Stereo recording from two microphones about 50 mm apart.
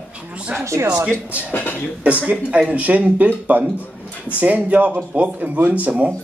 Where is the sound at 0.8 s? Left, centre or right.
Right.